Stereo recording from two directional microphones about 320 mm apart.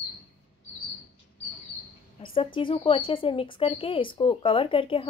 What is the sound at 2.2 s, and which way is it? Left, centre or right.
Speech, centre.